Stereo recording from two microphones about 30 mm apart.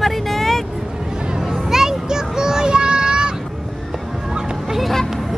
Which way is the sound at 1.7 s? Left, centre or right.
Centre.